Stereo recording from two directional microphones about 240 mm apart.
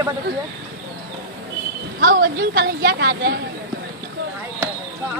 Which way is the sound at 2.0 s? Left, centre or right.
Right.